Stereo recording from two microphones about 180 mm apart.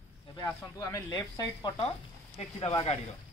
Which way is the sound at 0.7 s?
20° left (ahead or behind).